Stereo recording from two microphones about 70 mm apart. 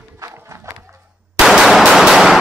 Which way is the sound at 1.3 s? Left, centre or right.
Centre.